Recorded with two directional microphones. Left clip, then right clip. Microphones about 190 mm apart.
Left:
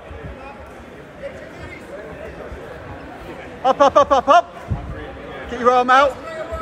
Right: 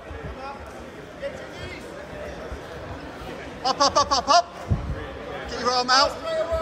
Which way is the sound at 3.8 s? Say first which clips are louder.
Left 7 dB; 20° right (ahead or behind).